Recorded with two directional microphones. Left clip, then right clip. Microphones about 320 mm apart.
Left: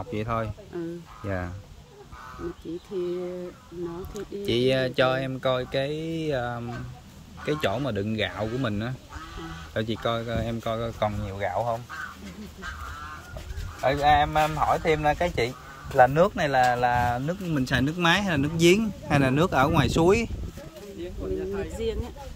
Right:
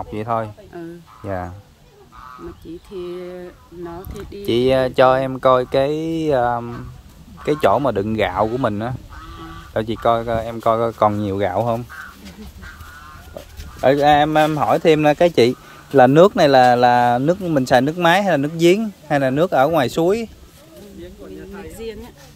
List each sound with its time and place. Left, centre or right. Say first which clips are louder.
0.1 s speech: right 7 dB; centre
4.5 s speech: right 8 dB; centre
13.8 s speech: right 8 dB; right; by 20.2 s centre
21.5 s a sound: left 1 dB; centre